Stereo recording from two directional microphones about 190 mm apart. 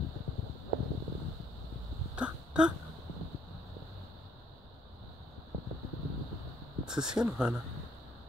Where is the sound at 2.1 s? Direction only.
5° right (ahead or behind).